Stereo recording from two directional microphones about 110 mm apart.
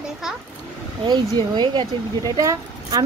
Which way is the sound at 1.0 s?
40° right (ahead or behind).